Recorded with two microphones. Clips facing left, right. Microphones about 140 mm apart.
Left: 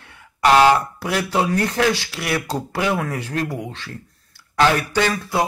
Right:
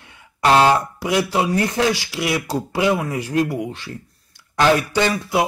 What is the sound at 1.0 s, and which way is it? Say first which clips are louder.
A man's voice: right 2 dB; 15° right (ahead or behind).